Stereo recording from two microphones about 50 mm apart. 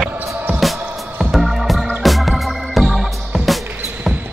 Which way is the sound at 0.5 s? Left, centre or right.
Centre.